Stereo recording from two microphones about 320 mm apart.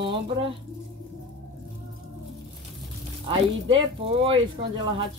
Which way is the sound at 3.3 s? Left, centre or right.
Centre.